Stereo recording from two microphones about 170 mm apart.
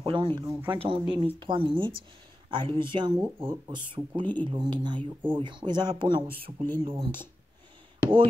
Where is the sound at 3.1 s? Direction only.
10° right (ahead or behind).